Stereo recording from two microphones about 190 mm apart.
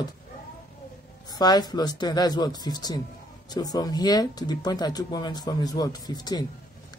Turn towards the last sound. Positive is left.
turn(degrees=20)  # may be behind; listen again after turning